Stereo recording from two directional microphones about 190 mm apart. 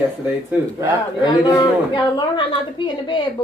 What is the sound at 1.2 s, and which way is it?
A woman's voice, 20° left (ahead or behind).